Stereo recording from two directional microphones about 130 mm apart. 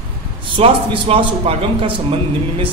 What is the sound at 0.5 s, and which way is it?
A man's voice, 45° right (ahead or behind).